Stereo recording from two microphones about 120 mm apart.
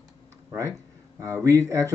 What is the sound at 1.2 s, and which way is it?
Speech, 20° right (ahead or behind).